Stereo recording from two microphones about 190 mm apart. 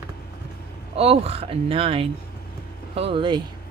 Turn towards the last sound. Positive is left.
turn(degrees=-25)  # may be behind; listen again after turning